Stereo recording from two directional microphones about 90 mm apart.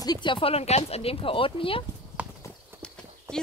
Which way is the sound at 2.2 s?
15° right (ahead or behind).